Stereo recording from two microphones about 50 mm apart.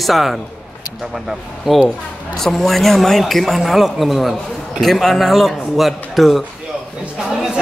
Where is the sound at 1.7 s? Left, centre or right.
Centre.